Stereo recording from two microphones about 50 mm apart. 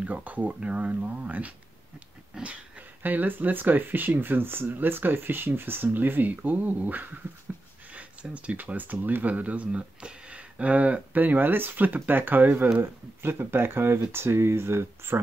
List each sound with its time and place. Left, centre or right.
0.0 s speech: right
3.0 s speech: right
13.2 s speech: right